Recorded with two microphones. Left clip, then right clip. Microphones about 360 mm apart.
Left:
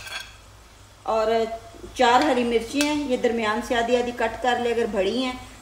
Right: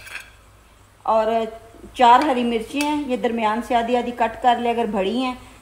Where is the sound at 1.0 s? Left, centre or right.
Centre.